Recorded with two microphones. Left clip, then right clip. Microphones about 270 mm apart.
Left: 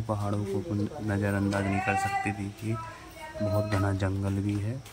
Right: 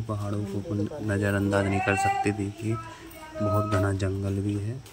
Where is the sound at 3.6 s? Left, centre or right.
Centre.